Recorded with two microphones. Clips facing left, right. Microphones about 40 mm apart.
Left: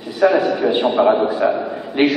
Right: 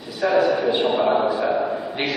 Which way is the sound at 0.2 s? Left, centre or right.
Centre.